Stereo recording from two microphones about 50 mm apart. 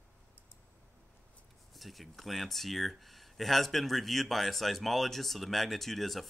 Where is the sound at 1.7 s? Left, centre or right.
Centre.